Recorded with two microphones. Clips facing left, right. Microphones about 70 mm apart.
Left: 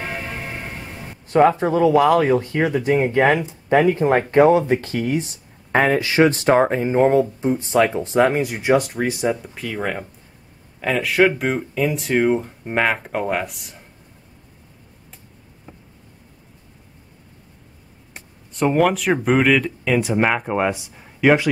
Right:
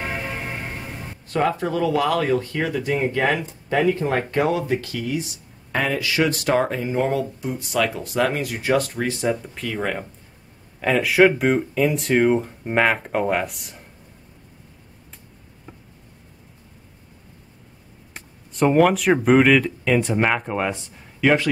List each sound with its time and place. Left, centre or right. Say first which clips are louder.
0.0 s vehicle: even; centre
1.6 s speech: left 6 dB; left; by 13.8 s centre
18.5 s speech: right 1 dB; centre